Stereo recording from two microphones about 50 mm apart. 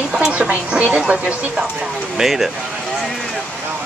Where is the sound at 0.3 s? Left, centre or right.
Right.